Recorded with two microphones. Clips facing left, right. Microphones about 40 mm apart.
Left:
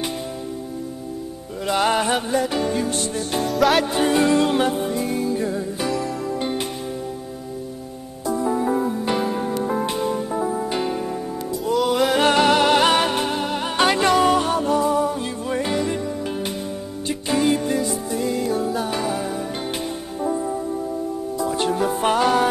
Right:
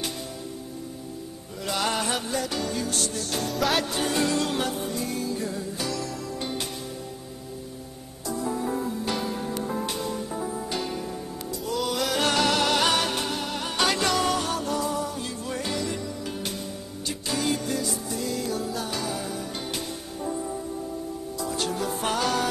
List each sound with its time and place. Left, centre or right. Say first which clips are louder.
1.7 s music: left 7 dB; left
3.4 s music: left 8 dB; centre
3.8 s music: left 7 dB; left
8.3 s music: left 7 dB; left
17.1 s music: left 8 dB; left